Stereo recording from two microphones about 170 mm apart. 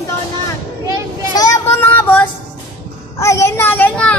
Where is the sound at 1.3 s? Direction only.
20° left (ahead or behind).